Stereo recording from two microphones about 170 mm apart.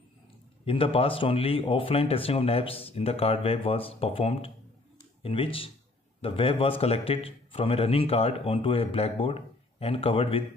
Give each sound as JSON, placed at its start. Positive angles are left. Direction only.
{"t": 0.7, "sound": "a man's voice", "side_deg": 30}